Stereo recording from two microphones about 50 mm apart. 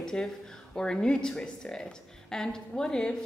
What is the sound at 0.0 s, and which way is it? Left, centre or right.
Speech, centre.